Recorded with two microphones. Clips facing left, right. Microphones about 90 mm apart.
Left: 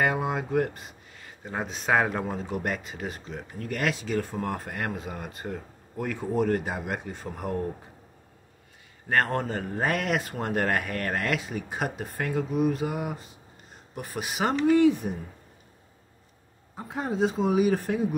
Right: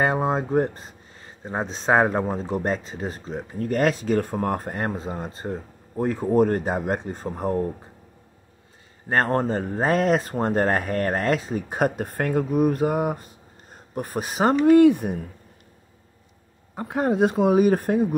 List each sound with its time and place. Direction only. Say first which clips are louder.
0.0 s speech: right 4 dB; 35° right (ahead or behind)
9.1 s speech: right 4 dB; 35° right (ahead or behind); by 15.1 s 55° right (ahead or behind)
16.7 s speech: right 7 dB; 60° right (ahead or behind)